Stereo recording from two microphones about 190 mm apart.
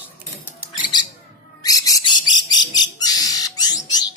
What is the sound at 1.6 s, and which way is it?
Bird, 20° left (ahead or behind).